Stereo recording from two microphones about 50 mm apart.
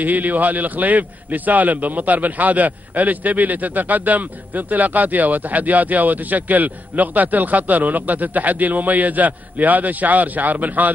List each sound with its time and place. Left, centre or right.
0.0 s a man's voice: right